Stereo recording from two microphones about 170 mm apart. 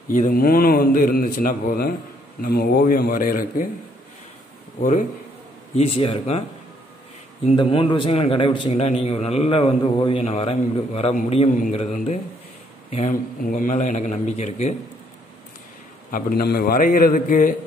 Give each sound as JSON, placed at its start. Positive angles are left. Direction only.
{"t": 0.1, "sound": "a man's voice", "side_deg": 55}
{"t": 4.7, "sound": "a man's voice", "side_deg": 45}
{"t": 5.8, "sound": "a man's voice", "side_deg": 35}
{"t": 7.4, "sound": "a man's voice", "side_deg": 35}
{"t": 16.1, "sound": "a man's voice", "side_deg": 60}